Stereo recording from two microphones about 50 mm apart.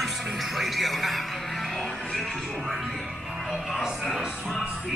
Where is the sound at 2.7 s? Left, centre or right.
Centre.